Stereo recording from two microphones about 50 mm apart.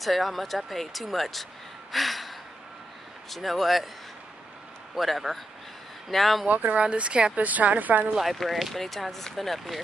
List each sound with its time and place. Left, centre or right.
0.0 s speech: centre
4.9 s speech: centre
6.4 s a woman's voice: right
6.8 s speech: right
7.3 s a woman's voice: right
8.2 s speech: centre